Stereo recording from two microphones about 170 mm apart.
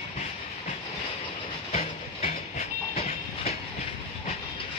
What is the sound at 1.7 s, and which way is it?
Train, 40° left (ahead or behind).